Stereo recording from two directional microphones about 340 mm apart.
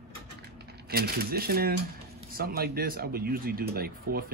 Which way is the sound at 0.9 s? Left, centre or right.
Right.